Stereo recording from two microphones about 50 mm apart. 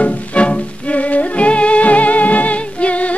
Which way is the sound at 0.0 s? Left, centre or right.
Left.